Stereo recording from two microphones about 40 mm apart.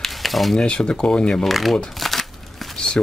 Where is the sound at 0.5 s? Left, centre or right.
Left.